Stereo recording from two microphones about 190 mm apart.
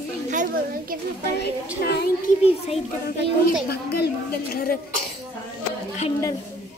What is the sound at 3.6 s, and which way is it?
A woman's voice, 55° left (ahead or behind).